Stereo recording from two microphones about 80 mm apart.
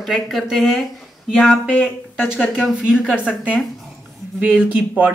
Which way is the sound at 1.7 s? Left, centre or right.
Left.